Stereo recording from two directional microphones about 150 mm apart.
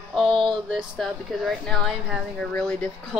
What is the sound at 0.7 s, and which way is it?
Speech, centre (ahead or behind).